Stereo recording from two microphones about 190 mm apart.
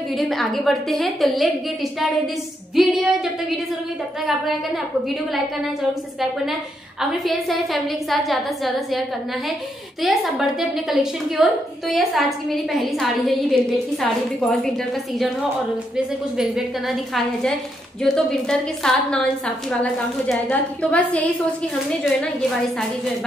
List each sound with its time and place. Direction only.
0.2 s a woman's voice: centre (ahead or behind)
2.7 s a woman's voice: centre (ahead or behind)
7.0 s a woman's voice: centre (ahead or behind)
10.0 s a woman's voice: centre (ahead or behind)
16.3 s a woman's voice: centre (ahead or behind)